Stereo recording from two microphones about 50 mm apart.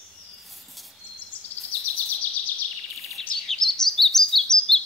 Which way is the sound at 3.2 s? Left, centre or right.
Centre.